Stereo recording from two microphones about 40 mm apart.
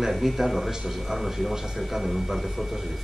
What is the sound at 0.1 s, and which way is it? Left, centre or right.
A man's voice, centre.